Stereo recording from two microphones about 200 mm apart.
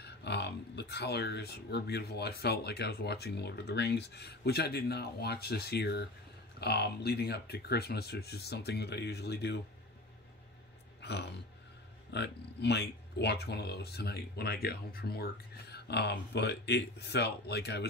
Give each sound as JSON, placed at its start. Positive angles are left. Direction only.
{"t": 0.0, "sound": "speech", "side_deg": 55}
{"t": 11.0, "sound": "speech", "side_deg": 55}